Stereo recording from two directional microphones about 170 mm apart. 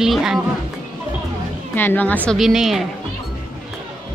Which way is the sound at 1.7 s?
10° left (ahead or behind).